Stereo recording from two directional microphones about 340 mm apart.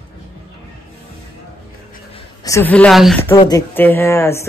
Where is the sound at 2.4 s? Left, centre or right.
Centre.